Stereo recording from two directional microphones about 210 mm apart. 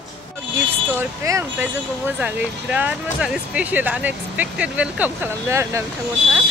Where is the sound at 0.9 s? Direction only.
10° right (ahead or behind).